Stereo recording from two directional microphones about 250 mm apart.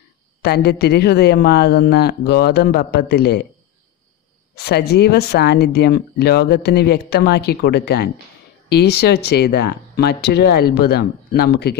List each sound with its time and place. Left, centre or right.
0.4 s speech: left
4.6 s speech: left